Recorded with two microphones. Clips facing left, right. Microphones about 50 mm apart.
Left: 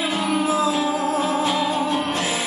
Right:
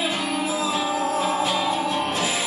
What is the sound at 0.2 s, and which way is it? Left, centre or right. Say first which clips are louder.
Music: left 4 dB; left.